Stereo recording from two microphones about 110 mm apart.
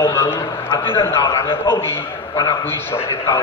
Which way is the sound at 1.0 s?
25° left (ahead or behind).